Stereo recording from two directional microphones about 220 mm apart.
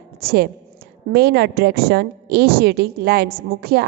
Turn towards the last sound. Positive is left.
turn(degrees=-45)  # may be behind; listen again after turning